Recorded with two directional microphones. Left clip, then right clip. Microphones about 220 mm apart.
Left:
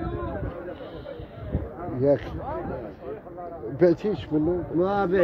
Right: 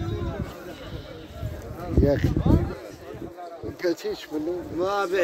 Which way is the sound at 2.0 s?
5° right (ahead or behind).